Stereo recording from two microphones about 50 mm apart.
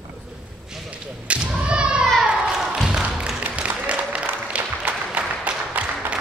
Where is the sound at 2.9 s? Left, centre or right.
Right.